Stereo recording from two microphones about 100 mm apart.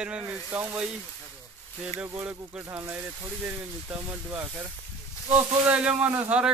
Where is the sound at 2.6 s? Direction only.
25° right (ahead or behind).